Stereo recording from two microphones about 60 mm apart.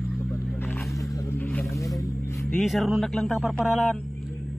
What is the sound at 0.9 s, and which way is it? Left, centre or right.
Wild animals, left.